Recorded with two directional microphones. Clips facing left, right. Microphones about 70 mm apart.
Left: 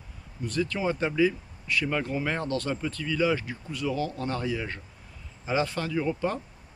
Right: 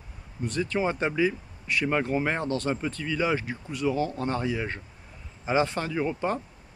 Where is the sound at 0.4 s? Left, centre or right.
Right.